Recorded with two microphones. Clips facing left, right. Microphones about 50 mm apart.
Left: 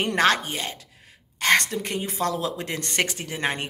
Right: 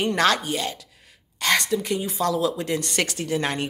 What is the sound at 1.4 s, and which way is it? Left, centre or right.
Speech, left.